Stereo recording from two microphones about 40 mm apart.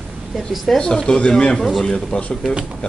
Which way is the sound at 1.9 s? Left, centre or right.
Left.